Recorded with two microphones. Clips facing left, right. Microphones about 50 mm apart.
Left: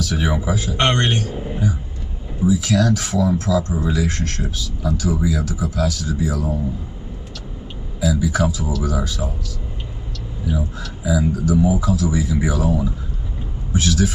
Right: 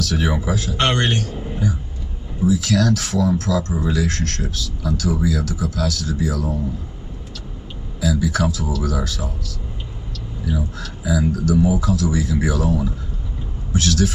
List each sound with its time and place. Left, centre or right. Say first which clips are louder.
0.0 s speech: even; centre
8.0 s speech: left 1 dB; centre
11.1 s speech: even; centre